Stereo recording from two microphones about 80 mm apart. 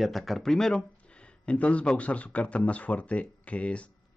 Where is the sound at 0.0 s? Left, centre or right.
Centre.